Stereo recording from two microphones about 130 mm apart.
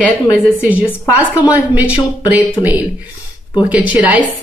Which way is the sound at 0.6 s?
10° right (ahead or behind).